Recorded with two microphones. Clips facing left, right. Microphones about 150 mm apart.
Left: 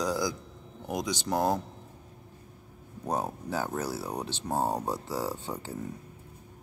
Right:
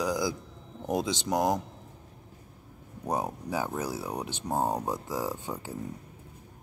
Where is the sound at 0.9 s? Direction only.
25° right (ahead or behind).